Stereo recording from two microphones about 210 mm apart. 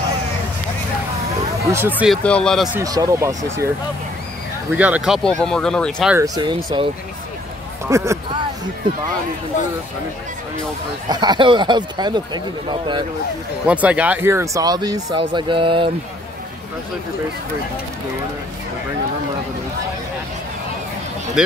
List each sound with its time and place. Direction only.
1.7 s speech: 10° right (ahead or behind)
2.2 s speech: 5° left (ahead or behind)
2.8 s speech: 15° right (ahead or behind)
4.7 s speech: 5° right (ahead or behind)
6.1 s speech: 15° right (ahead or behind)
7.9 s speech: 15° right (ahead or behind)
11.1 s speech: 20° right (ahead or behind)
13.7 s speech: 5° right (ahead or behind); by 15.9 s 25° right (ahead or behind)